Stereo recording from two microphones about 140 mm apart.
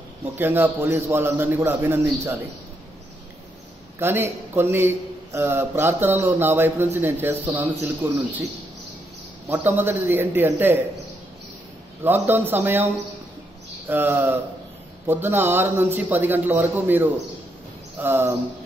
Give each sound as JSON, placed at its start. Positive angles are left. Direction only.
{"t": 0.4, "sound": "a man's voice", "side_deg": -15}
{"t": 4.0, "sound": "a man's voice", "side_deg": -15}
{"t": 9.5, "sound": "a man's voice", "side_deg": -15}
{"t": 12.0, "sound": "a man's voice", "side_deg": -15}
{"t": 13.8, "sound": "a man's voice", "side_deg": -15}